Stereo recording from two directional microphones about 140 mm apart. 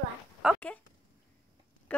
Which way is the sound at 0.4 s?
5° right (ahead or behind).